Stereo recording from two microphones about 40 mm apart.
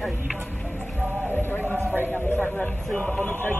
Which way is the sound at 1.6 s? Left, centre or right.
Right.